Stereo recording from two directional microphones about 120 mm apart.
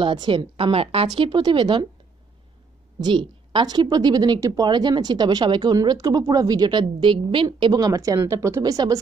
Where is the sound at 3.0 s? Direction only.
40° right (ahead or behind).